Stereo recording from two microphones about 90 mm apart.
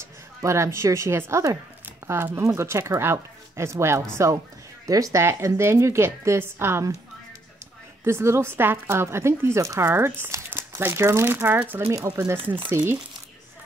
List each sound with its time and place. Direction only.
0.0 s a woman's voice: 35° right (ahead or behind)
5.2 s a woman's voice: 30° right (ahead or behind)
8.0 s a woman's voice: 30° right (ahead or behind)